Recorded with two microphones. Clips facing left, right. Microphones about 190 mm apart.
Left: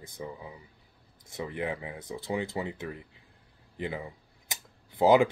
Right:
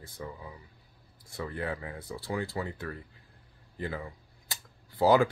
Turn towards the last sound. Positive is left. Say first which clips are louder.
# left 2 dB
turn(degrees=20)  # may be behind; listen again after turning